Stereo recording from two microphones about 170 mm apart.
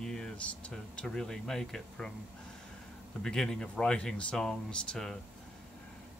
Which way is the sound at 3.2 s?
5° left (ahead or behind).